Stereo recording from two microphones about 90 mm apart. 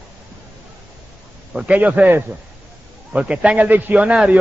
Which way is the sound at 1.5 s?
15° right (ahead or behind).